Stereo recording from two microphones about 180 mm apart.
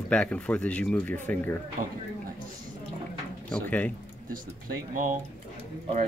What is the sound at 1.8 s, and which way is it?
Speech, 50° right (ahead or behind).